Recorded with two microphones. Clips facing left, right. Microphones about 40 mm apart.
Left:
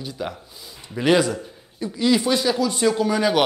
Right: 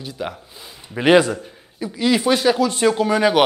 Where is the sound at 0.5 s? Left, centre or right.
Right.